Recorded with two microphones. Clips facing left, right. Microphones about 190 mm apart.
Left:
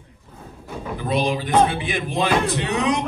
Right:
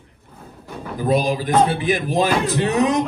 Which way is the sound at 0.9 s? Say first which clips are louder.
Right 4 dB; 40° right (ahead or behind).